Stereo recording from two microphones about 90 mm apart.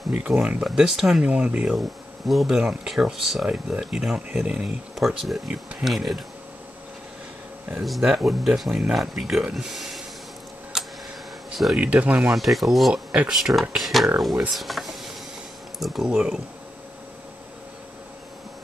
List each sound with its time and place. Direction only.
0.1 s speech: 15° right (ahead or behind)
2.2 s speech: centre (ahead or behind)
7.8 s speech: centre (ahead or behind)
10.7 s tick-tock: 5° right (ahead or behind)
11.7 s speech: 15° right (ahead or behind)
12.4 s speech: centre (ahead or behind)
12.9 s speech: 15° right (ahead or behind)
13.3 s speech: centre (ahead or behind)